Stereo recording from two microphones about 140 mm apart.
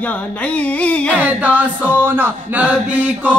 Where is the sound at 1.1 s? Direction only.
10° right (ahead or behind).